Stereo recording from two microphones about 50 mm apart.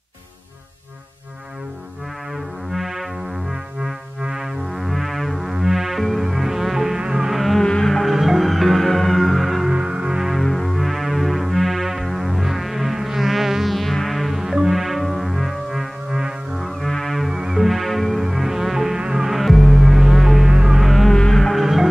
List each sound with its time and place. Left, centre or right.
2.7 s music: centre
7.6 s music: centre
9.8 s music: centre
10.4 s music: centre
16.6 s music: centre
17.3 s music: centre